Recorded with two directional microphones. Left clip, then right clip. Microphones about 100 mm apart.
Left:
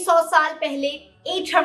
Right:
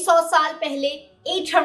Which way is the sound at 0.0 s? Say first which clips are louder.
Even; centre (ahead or behind).